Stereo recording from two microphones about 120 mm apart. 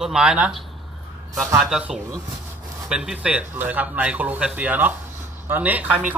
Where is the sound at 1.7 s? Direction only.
5° right (ahead or behind).